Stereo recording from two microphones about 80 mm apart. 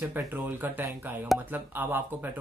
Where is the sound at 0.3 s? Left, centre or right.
Right.